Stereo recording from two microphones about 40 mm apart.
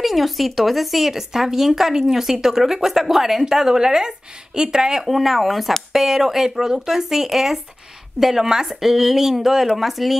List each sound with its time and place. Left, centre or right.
0.0 s speech: centre
5.0 s speech: centre